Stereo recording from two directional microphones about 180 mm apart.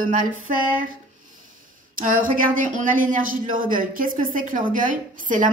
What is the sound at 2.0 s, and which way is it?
A woman's voice, 50° right (ahead or behind).